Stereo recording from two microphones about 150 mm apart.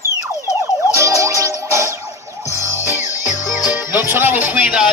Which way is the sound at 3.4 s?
25° left (ahead or behind).